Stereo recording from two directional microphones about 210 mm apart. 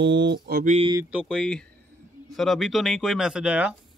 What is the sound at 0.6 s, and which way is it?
Speech, 30° right (ahead or behind).